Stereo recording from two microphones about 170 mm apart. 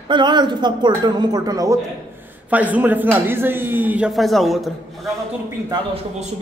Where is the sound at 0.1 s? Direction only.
25° right (ahead or behind).